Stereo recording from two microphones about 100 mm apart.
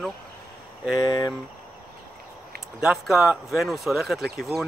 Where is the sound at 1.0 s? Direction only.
40° left (ahead or behind).